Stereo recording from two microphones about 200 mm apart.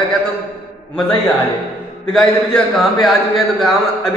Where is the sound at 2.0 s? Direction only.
5° left (ahead or behind).